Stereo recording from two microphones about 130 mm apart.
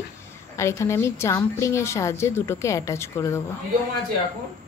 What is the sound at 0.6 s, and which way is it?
A woman's voice, 20° left (ahead or behind).